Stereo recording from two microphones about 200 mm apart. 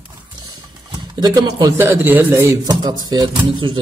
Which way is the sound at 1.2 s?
20° right (ahead or behind).